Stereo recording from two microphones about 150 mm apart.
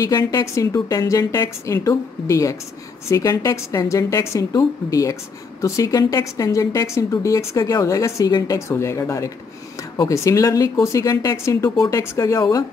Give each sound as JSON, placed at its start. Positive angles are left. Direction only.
{"t": 0.0, "sound": "a woman's voice", "side_deg": 25}